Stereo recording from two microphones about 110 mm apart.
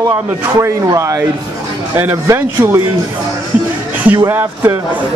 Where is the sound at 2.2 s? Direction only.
25° right (ahead or behind).